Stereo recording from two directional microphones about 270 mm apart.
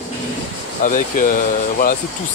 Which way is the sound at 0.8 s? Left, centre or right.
Left.